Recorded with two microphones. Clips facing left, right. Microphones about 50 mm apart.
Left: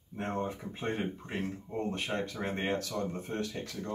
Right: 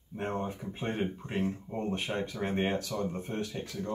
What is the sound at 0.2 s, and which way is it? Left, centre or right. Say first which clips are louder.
Speech: even; right.